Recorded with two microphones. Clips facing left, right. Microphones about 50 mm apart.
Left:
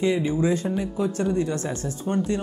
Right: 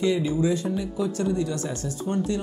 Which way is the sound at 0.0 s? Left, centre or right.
Left.